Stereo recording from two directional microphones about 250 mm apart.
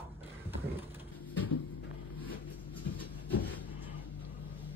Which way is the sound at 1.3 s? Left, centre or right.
Left.